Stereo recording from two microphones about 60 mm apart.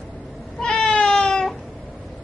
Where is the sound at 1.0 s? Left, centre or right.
Centre.